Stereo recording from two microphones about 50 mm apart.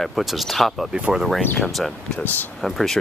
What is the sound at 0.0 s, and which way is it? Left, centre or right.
Speech, centre.